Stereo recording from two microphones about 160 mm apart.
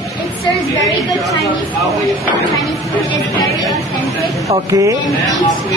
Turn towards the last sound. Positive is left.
turn(degrees=-20)  # may be behind; listen again after turning